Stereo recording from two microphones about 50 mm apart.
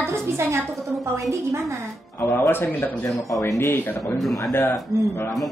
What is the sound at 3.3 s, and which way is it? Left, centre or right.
Speech, left.